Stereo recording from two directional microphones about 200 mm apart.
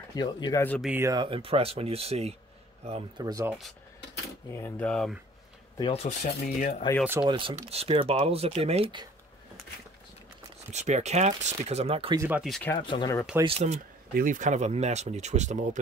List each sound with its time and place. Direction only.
0.1 s speech: 20° left (ahead or behind)
0.7 s speech: 5° right (ahead or behind)
1.0 s speech: 20° right (ahead or behind)
3.3 s speech: 15° right (ahead or behind)
4.5 s cutlery: 10° left (ahead or behind)
5.8 s speech: 25° left (ahead or behind)
6.0 s speech: 40° left (ahead or behind)
7.1 s speech: 20° right (ahead or behind)
10.7 s speech: 35° right (ahead or behind)
12.2 s speech: 5° right (ahead or behind)
12.7 s speech: 20° left (ahead or behind)
13.4 s speech: 30° right (ahead or behind)
14.1 s speech: 40° right (ahead or behind)